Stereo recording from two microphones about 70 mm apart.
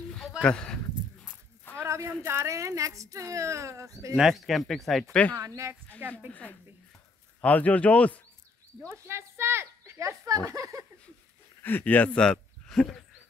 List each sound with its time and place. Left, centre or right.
0.4 s speech: centre
1.8 s speech: right
4.1 s speech: centre
7.4 s speech: left
8.8 s a sound: right
11.6 s speech: left